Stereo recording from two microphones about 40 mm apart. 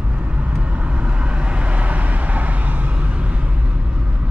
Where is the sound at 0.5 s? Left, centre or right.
Right.